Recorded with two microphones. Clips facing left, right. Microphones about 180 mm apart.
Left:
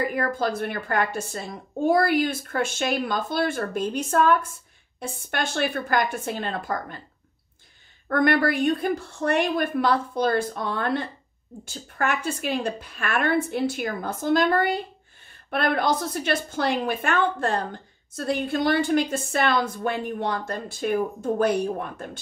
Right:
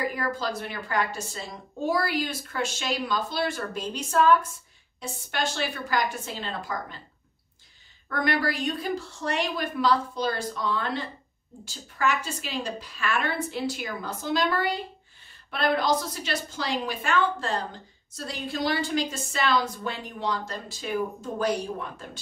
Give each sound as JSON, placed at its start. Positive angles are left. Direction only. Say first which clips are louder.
{"t": 0.0, "sound": "a woman's voice", "louder": "left 4 dB", "side_deg": 55}
{"t": 8.1, "sound": "a woman's voice", "louder": "left 6 dB", "side_deg": 55}